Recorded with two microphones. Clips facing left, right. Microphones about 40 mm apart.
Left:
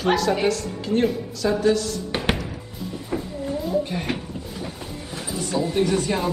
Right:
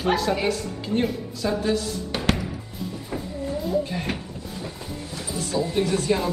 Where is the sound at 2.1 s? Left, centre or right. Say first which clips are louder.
Even; left.